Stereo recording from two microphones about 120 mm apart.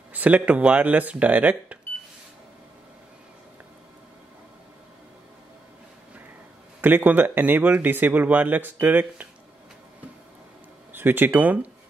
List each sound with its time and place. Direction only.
0.1 s a man's voice: 15° right (ahead or behind)
6.8 s a man's voice: 15° right (ahead or behind)
10.9 s speech: 15° right (ahead or behind)